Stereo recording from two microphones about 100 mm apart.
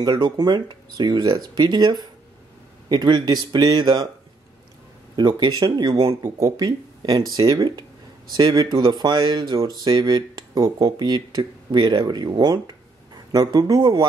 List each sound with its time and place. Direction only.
0.2 s speech: 45° right (ahead or behind)
5.1 s speech: 45° right (ahead or behind)